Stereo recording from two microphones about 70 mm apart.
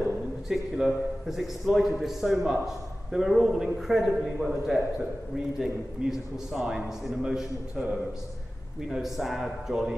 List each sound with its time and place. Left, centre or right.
0.5 s a man's voice: centre
8.8 s a man's voice: centre